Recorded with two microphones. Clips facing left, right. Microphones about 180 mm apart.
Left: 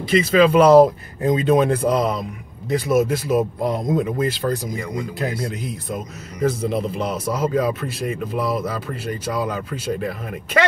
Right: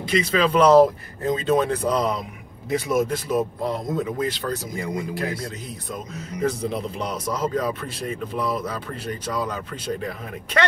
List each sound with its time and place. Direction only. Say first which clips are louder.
0.0 s a man's voice: left 6 dB; 5° left (ahead or behind)
4.7 s speech: left 1 dB; 25° right (ahead or behind)
6.4 s a man's voice: left 4 dB; 5° left (ahead or behind)